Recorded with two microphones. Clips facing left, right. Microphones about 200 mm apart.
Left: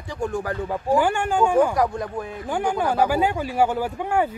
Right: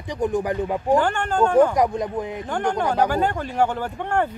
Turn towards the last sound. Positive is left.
turn(degrees=10)  # may be behind; listen again after turning